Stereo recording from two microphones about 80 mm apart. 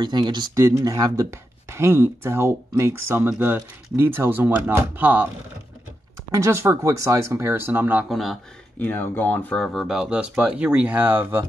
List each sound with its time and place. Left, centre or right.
0.0 s speech: right
0.6 s speech: right
1.2 s speech: right
6.3 s speech: right
8.1 s speech: centre
8.7 s speech: left
9.8 s speech: centre; by 11.4 s right